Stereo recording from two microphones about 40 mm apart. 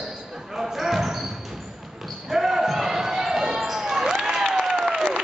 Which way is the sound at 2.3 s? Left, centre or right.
Centre.